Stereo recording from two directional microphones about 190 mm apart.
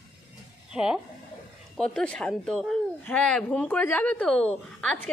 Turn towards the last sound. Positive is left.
turn(degrees=5)  # may be behind; listen again after turning